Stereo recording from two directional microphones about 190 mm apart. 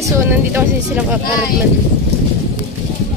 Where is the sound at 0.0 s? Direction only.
10° right (ahead or behind).